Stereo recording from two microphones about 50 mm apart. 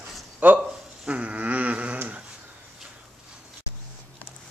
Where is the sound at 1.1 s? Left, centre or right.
Right.